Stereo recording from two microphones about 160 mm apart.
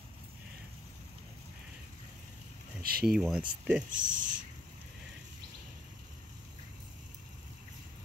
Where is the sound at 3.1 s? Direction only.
5° right (ahead or behind).